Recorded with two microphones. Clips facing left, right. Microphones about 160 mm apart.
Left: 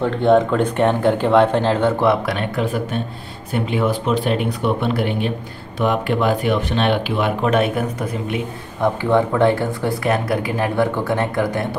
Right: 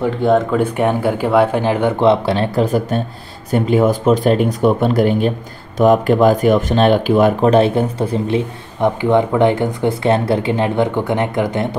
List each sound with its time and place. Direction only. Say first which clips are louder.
0.0 s speech: even; 5° right (ahead or behind); by 8.4 s 30° right (ahead or behind)
8.8 s speech: right 3 dB; 20° right (ahead or behind)